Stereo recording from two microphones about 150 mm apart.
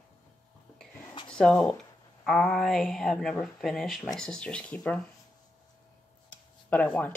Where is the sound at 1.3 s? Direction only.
5° left (ahead or behind).